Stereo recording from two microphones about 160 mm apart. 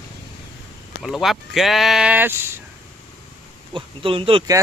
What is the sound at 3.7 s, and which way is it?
Speech, 35° right (ahead or behind).